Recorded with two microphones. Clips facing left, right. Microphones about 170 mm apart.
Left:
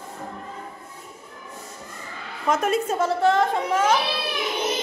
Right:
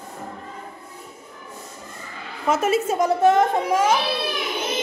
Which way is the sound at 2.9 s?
15° right (ahead or behind).